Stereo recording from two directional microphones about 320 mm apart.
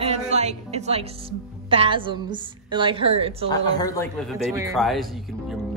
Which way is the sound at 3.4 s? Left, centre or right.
Centre.